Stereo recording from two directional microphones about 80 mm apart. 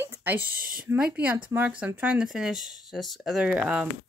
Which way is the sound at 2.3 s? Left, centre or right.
Centre.